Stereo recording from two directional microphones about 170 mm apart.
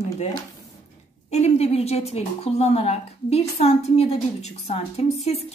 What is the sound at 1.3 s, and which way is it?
Speech, 40° left (ahead or behind).